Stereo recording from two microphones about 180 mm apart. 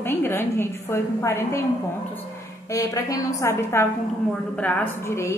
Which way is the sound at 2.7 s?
20° left (ahead or behind).